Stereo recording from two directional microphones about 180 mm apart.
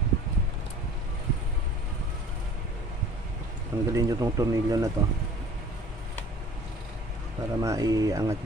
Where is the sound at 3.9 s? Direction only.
20° right (ahead or behind).